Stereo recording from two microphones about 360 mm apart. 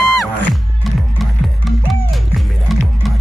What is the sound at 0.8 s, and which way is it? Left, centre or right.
Music, centre.